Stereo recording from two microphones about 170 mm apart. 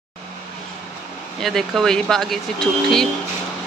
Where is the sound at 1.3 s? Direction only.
Centre (ahead or behind).